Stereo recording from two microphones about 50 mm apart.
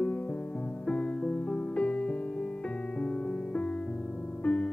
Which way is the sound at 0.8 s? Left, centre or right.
Left.